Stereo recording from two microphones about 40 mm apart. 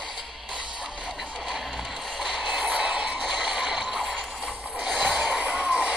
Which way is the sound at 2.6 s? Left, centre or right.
Right.